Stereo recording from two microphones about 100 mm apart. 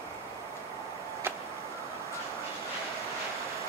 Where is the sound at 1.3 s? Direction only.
25° right (ahead or behind).